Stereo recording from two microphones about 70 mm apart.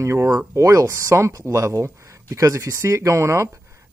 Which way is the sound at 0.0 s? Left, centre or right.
Right.